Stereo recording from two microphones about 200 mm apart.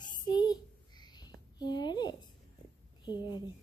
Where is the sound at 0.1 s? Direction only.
20° left (ahead or behind).